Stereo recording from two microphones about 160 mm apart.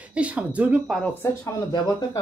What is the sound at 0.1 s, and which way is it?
Speech, 5° right (ahead or behind).